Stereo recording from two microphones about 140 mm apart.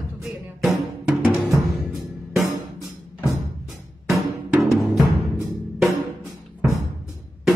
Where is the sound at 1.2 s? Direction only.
20° right (ahead or behind).